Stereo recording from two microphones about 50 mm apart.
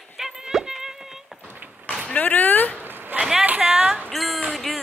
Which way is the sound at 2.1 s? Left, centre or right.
Left.